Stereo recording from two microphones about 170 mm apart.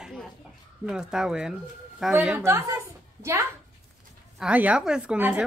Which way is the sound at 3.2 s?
15° right (ahead or behind).